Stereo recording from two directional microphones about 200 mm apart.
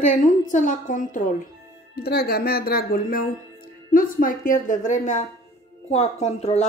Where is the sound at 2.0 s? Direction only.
50° left (ahead or behind).